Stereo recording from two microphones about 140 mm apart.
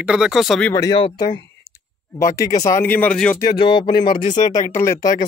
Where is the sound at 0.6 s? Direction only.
20° left (ahead or behind).